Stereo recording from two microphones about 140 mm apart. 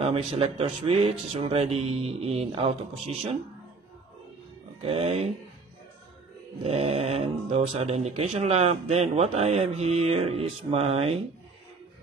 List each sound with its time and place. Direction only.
0.0 s speech: 45° right (ahead or behind)
4.8 s speech: 50° right (ahead or behind)
6.6 s speech: 50° right (ahead or behind)